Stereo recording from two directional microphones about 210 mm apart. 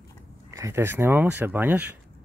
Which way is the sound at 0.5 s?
15° right (ahead or behind).